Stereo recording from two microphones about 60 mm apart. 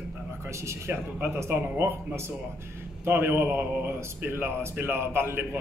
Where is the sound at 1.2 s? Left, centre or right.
Right.